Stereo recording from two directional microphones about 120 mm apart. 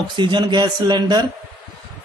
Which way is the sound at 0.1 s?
40° right (ahead or behind).